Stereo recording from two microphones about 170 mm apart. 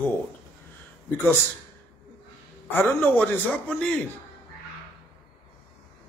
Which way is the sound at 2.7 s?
10° left (ahead or behind).